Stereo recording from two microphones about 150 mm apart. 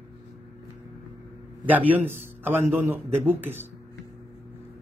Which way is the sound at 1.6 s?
10° right (ahead or behind).